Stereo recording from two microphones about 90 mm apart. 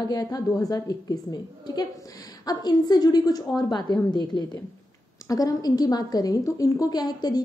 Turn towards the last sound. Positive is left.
turn(degrees=50)  # may be behind; listen again after turning